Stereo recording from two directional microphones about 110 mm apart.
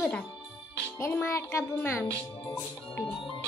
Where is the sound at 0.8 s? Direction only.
20° left (ahead or behind).